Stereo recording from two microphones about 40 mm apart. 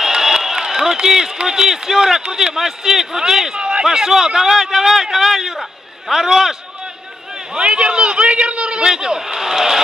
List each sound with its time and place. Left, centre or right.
0.0 s a sound: centre
1.5 s a man's voice: centre
7.5 s a man's voice: right; by 9.8 s centre